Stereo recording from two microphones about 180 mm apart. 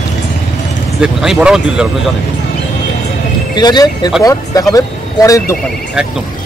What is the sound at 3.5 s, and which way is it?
Speech, 25° left (ahead or behind).